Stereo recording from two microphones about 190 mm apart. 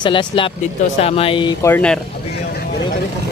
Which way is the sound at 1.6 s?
10° left (ahead or behind).